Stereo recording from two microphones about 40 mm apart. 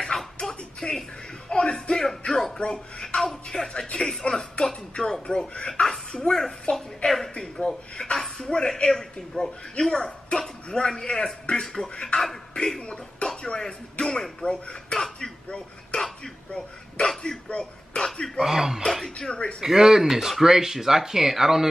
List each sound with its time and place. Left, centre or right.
0.4 s music: centre
2.2 s music: centre
2.6 s speech: left
6.6 s speech: left
7.5 s a man's voice: centre
18.4 s speech: centre
18.8 s speech: centre
19.1 s speech: left
19.6 s speech: centre